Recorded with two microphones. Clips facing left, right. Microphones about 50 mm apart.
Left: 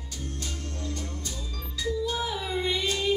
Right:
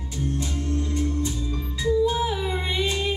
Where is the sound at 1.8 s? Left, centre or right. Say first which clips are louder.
Right 7 dB; centre.